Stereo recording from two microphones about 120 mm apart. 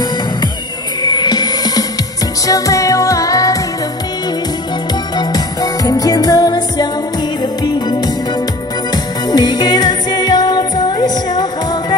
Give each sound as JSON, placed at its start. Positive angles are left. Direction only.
{"t": 1.0, "sound": "music", "side_deg": 35}
{"t": 5.1, "sound": "music", "side_deg": 35}
{"t": 8.9, "sound": "music", "side_deg": 35}